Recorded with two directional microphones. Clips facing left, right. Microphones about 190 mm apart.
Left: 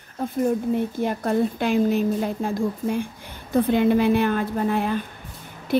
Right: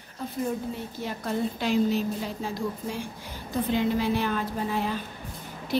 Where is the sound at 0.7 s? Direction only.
55° left (ahead or behind).